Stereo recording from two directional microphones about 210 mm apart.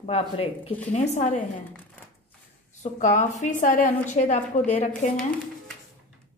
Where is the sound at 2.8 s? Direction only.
35° left (ahead or behind).